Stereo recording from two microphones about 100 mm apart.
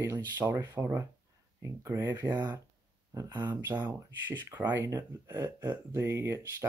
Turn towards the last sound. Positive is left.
turn(degrees=-30)  # may be behind; listen again after turning